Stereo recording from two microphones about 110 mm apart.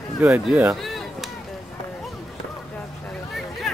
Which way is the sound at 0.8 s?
Centre (ahead or behind).